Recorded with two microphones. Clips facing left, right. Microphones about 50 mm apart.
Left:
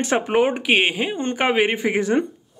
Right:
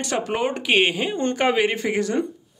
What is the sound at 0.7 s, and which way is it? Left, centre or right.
Speech, centre.